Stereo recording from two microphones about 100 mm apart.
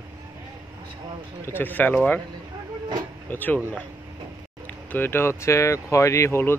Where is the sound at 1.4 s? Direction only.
20° left (ahead or behind).